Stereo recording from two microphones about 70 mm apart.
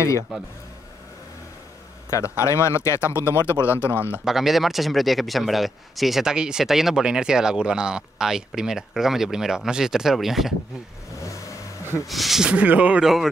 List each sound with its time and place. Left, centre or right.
2.0 s speech: left
4.2 s speech: centre
12.1 s speech: centre
12.4 s speech: centre
13.0 s speech: centre